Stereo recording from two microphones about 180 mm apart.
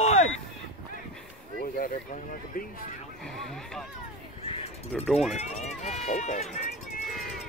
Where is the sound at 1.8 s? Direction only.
50° left (ahead or behind).